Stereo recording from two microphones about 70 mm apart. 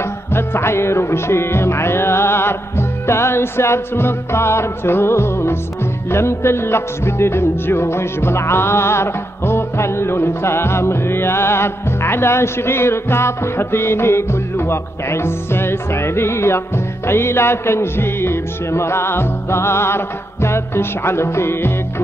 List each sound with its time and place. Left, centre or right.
0.3 s music: left